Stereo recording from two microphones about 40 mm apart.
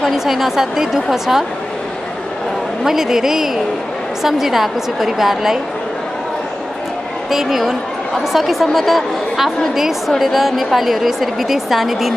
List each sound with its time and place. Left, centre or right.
0.0 s a woman's voice: centre
2.8 s a woman's voice: centre
7.2 s a woman's voice: centre